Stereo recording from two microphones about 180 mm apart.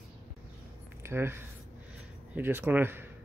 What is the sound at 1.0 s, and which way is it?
Speech, 15° right (ahead or behind).